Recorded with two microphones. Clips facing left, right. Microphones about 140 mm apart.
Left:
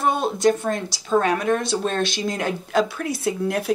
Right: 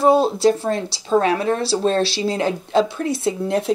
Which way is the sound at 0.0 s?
30° right (ahead or behind).